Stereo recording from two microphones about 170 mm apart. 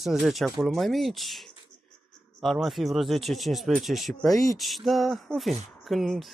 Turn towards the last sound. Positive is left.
turn(degrees=0)  # may be behind; listen again after turning